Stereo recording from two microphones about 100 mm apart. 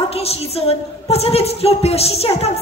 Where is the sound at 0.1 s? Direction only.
90° left.